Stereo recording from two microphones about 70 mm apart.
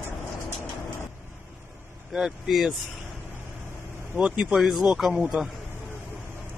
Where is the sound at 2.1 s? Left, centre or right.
Centre.